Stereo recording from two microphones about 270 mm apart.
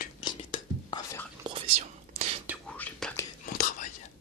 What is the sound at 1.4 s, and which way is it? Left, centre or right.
Whispering, right.